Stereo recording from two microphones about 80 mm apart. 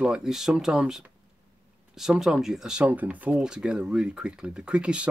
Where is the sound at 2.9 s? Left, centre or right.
Centre.